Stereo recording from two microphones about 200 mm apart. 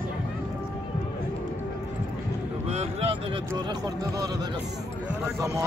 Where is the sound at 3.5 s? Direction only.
20° right (ahead or behind).